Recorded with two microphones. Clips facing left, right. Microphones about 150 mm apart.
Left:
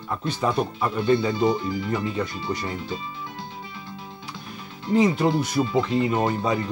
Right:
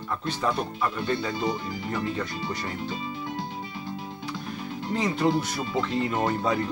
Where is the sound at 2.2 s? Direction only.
Centre (ahead or behind).